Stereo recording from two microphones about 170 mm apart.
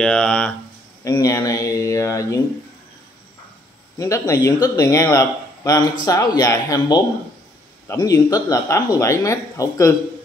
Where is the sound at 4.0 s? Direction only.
20° left (ahead or behind).